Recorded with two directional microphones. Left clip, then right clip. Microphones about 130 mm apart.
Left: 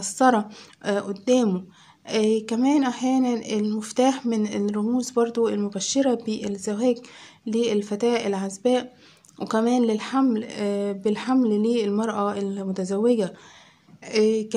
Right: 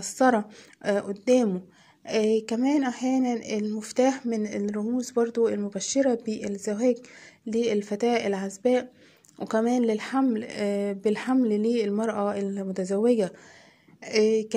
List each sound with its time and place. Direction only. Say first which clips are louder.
0.0 s a woman's voice: left 3 dB; 20° right (ahead or behind)